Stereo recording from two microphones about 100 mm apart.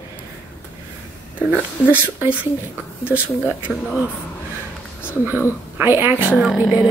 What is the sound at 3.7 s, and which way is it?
Speech, 15° right (ahead or behind).